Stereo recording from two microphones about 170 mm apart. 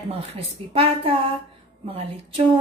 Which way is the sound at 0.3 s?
35° right (ahead or behind).